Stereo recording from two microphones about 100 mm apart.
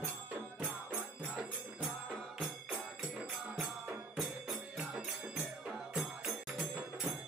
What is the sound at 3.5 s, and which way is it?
Music, 5° right (ahead or behind).